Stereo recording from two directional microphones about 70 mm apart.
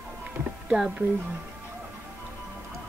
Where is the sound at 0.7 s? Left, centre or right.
Centre.